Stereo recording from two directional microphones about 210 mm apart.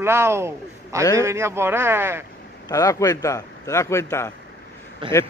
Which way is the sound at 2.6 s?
15° left (ahead or behind).